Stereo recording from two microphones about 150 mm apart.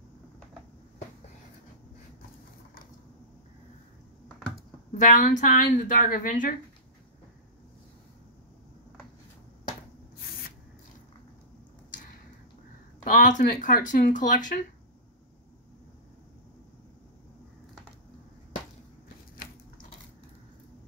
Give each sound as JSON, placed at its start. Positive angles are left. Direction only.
{"t": 5.0, "sound": "a woman's voice", "side_deg": 60}
{"t": 13.1, "sound": "a woman's voice", "side_deg": 60}